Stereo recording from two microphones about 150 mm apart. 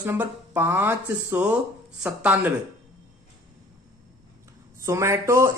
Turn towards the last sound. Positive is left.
turn(degrees=-20)  # may be behind; listen again after turning